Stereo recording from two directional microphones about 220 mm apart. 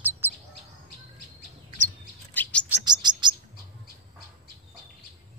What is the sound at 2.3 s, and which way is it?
Chirp, 5° left (ahead or behind).